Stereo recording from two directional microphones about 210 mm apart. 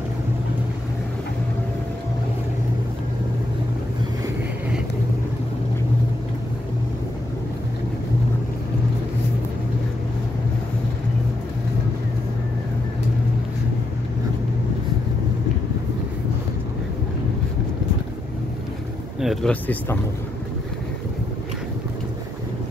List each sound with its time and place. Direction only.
19.2 s speech: 5° left (ahead or behind)